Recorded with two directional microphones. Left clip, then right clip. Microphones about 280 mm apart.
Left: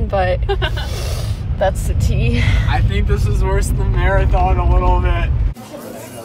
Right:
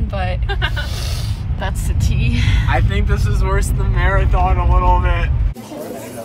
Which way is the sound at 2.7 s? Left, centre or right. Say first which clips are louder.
Right 1 dB; centre.